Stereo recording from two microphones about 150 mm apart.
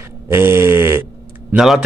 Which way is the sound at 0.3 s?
15° right (ahead or behind).